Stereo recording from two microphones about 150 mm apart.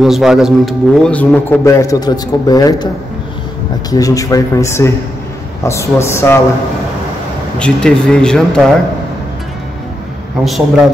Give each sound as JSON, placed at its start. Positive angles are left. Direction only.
{"t": 0.0, "sound": "a man's voice", "side_deg": -5}
{"t": 3.9, "sound": "a man's voice", "side_deg": 20}
{"t": 7.5, "sound": "speech", "side_deg": 5}
{"t": 10.4, "sound": "speech", "side_deg": 0}